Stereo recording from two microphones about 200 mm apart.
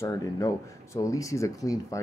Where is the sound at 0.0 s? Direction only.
15° left (ahead or behind).